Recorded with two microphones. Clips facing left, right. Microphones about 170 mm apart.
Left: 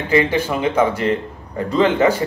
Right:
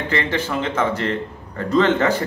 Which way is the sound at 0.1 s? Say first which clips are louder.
Left 7 dB; 10° left (ahead or behind).